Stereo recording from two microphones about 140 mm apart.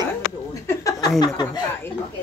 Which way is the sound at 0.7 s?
25° left (ahead or behind).